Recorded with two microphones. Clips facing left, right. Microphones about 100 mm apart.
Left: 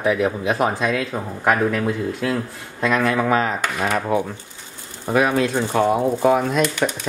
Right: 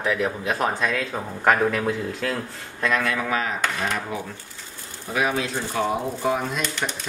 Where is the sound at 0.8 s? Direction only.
5° left (ahead or behind).